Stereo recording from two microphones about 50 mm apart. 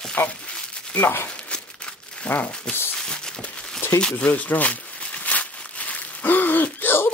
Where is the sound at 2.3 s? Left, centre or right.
Left.